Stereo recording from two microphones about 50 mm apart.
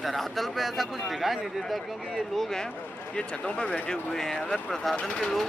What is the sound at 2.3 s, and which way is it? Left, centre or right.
Speech, centre.